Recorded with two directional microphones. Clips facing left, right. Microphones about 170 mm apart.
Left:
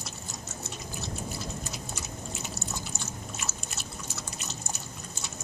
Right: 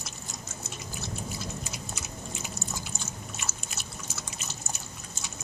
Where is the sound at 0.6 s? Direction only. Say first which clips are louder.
Even; centre (ahead or behind).